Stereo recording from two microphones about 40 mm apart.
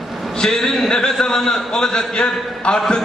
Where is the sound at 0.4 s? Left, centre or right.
Centre.